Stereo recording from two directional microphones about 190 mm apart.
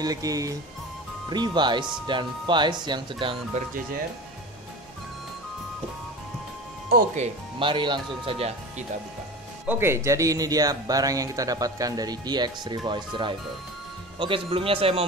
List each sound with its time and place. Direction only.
0.0 s speech: 20° right (ahead or behind)
7.2 s speech: 25° right (ahead or behind)
9.7 s speech: 15° right (ahead or behind); by 15.0 s 30° right (ahead or behind)